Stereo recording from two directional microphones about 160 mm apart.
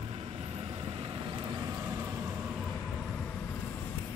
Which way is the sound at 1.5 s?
25° right (ahead or behind).